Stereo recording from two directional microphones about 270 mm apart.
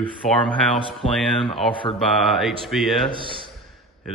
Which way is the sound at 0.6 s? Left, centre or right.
Centre.